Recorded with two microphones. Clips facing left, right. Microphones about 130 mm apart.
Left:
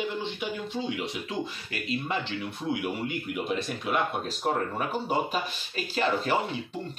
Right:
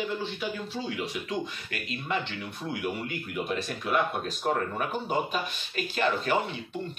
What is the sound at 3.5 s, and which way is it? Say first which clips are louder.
Speech: even; 20° left (ahead or behind).